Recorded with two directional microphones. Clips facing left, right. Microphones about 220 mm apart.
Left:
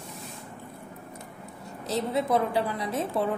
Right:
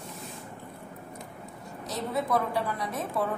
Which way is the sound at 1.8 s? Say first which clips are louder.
Left 4 dB; 25° left (ahead or behind).